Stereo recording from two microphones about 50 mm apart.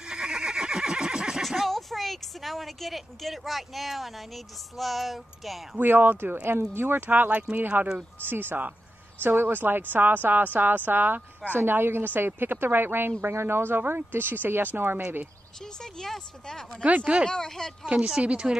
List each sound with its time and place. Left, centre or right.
0.0 s neigh: centre
1.4 s speech: centre
5.8 s speech: right
15.6 s speech: centre
16.8 s speech: right
17.3 s speech: centre
17.8 s speech: centre